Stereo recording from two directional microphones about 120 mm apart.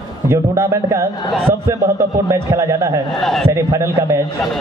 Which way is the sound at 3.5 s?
25° right (ahead or behind).